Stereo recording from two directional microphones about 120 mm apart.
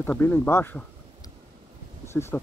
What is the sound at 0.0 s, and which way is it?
Speech, 15° left (ahead or behind).